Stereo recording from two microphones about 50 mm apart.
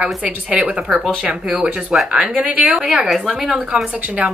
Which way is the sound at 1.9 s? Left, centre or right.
Centre.